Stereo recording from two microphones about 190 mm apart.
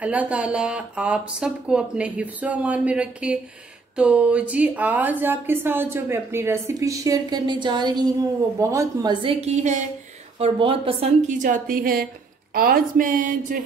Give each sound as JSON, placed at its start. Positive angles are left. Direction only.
{"t": 0.0, "sound": "a woman's voice", "side_deg": -5}
{"t": 9.2, "sound": "a woman's voice", "side_deg": -35}
{"t": 11.3, "sound": "speech", "side_deg": -45}